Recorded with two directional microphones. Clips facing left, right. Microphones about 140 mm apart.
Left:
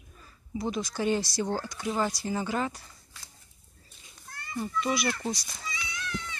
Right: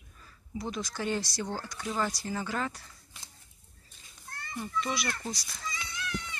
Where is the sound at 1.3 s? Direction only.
30° left (ahead or behind).